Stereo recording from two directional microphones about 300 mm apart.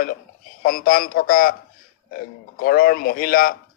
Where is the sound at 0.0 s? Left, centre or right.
Left.